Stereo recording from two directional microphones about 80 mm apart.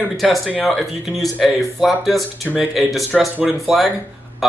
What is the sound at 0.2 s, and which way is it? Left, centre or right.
Speech, centre.